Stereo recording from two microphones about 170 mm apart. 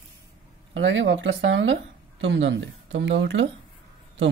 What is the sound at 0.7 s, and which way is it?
Speech, 90° right.